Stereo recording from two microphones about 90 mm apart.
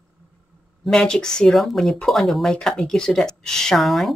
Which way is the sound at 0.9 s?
10° left (ahead or behind).